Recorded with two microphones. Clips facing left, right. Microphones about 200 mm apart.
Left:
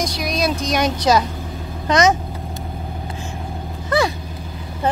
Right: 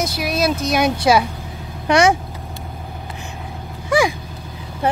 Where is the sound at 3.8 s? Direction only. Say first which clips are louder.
Right 2 dB; 10° right (ahead or behind).